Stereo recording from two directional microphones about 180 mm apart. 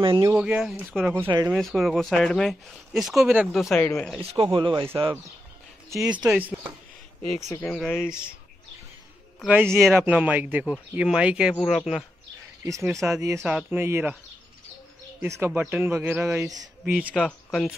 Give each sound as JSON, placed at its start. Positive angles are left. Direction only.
{"t": 0.0, "sound": "speech", "side_deg": -25}
{"t": 0.3, "sound": "speech", "side_deg": -5}
{"t": 1.1, "sound": "speech", "side_deg": -20}
{"t": 1.5, "sound": "speech", "side_deg": 0}
{"t": 3.7, "sound": "speech", "side_deg": 10}
{"t": 4.2, "sound": "speech", "side_deg": -30}
{"t": 7.6, "sound": "speech", "side_deg": 0}
{"t": 9.4, "sound": "a man's voice", "side_deg": -10}
{"t": 12.6, "sound": "a man's voice", "side_deg": -15}
{"t": 13.4, "sound": "a man's voice", "side_deg": -5}
{"t": 15.2, "sound": "a man's voice", "side_deg": -15}